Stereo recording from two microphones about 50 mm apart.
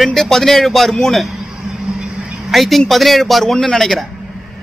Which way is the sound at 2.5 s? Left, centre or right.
Centre.